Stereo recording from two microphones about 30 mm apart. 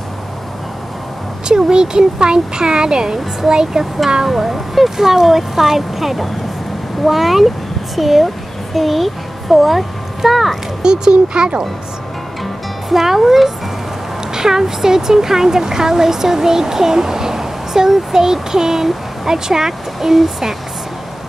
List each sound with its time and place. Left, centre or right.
1.5 s speech: right
4.4 s a child's voice: centre
10.8 s speech: right
12.9 s speech: centre
14.3 s speech: centre